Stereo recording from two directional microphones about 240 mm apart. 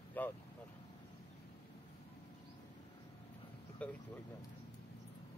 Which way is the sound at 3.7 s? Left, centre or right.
Centre.